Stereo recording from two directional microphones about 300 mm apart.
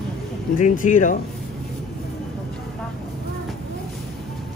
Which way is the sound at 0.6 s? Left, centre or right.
Left.